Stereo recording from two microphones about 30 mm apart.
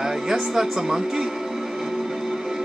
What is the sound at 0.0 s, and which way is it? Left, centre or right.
Speech, centre.